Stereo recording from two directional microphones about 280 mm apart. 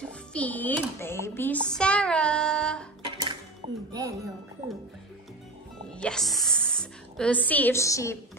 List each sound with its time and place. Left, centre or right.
0.0 s a child's voice: centre
3.3 s music: centre
5.9 s a woman's voice: centre